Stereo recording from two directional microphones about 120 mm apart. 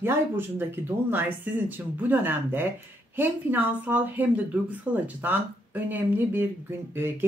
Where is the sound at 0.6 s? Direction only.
20° right (ahead or behind).